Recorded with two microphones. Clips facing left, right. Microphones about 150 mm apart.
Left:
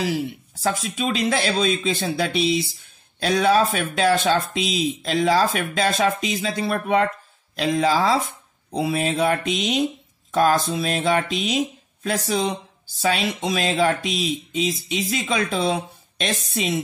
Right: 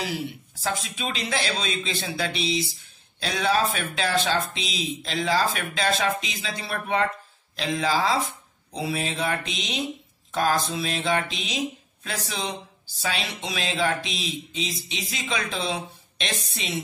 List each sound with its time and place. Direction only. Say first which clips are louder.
0.6 s speech: left 5 dB; 45° left (ahead or behind)